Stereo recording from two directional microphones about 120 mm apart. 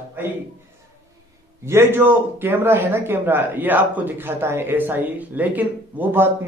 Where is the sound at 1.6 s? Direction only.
20° right (ahead or behind).